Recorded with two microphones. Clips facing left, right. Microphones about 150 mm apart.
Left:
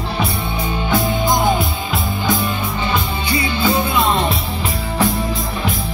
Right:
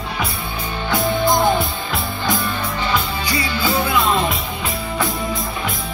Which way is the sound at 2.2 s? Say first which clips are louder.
Left 2 dB; 20° left (ahead or behind).